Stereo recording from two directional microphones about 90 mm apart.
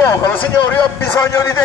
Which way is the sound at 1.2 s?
35° left (ahead or behind).